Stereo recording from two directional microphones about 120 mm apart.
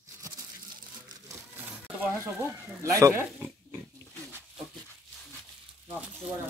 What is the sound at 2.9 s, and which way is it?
Pig, 25° right (ahead or behind).